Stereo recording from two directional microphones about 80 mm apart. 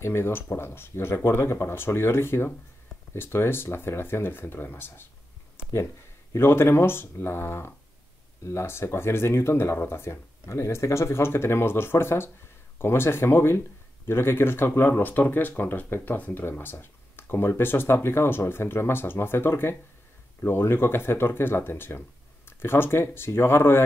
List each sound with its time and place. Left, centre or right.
0.0 s speech: left
5.6 s a sound: left
6.3 s speech: left